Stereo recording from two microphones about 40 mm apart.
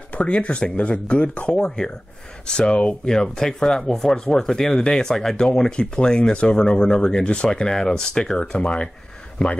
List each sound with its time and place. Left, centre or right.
0.1 s speech: left
3.1 s speech: centre
5.7 s speech: left
7.4 s speech: centre